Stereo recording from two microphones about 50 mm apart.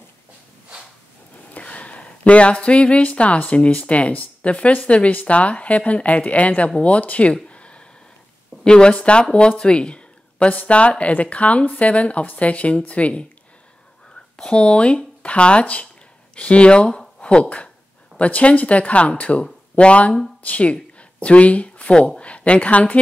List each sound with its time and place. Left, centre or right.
1.5 s speech: left
7.4 s a sound: left
8.6 s speech: centre
14.4 s speech: centre